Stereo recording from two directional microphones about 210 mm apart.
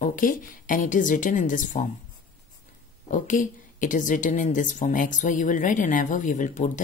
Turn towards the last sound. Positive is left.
turn(degrees=35)  # may be behind; listen again after turning